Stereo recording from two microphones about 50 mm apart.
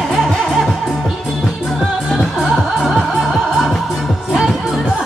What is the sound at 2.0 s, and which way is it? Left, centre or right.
Music, centre.